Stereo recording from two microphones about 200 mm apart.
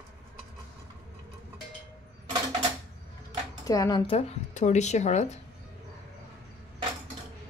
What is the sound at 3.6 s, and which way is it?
Speech, 20° left (ahead or behind).